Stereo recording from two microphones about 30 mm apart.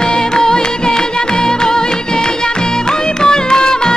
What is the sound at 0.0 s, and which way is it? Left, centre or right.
Music, left.